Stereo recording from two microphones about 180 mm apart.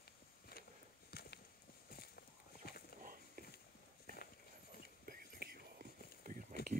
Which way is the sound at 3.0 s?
50° right (ahead or behind).